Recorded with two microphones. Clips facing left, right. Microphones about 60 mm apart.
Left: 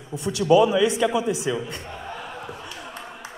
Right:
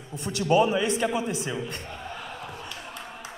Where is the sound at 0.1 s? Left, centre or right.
Right.